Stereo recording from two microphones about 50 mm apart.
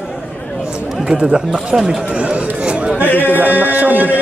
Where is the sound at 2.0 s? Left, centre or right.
Right.